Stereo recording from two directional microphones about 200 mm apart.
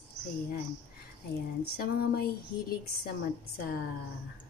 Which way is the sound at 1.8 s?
50° left (ahead or behind).